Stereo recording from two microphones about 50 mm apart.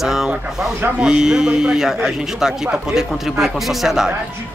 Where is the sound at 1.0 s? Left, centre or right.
Centre.